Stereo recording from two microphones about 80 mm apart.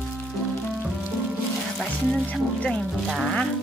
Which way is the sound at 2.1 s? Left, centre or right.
Centre.